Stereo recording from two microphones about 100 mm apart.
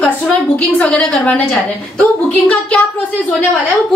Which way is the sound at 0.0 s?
10° left (ahead or behind).